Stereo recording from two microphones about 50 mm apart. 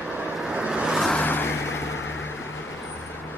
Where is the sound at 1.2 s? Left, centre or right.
Left.